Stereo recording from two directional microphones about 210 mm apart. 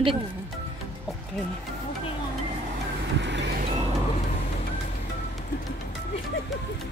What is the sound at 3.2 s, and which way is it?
Vehicle, 55° right (ahead or behind).